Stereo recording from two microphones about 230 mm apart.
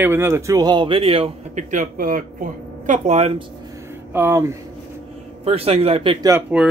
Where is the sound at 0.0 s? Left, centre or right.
Centre; by 3.4 s right.